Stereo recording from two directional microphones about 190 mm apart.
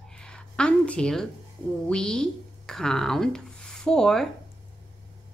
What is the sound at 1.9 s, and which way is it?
Speech, 5° left (ahead or behind).